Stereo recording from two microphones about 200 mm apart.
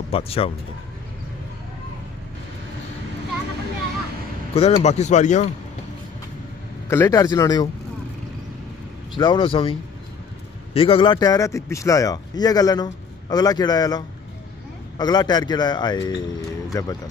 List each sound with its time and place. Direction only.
0.1 s a man's voice: 30° left (ahead or behind)
4.6 s speech: 30° left (ahead or behind)
6.9 s speech: 15° left (ahead or behind)
9.1 s a man's voice: 25° left (ahead or behind)